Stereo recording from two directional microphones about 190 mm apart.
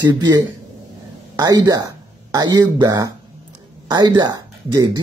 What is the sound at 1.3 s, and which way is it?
Speech, 20° right (ahead or behind).